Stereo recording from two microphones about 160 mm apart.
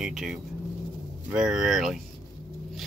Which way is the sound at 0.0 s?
5° right (ahead or behind).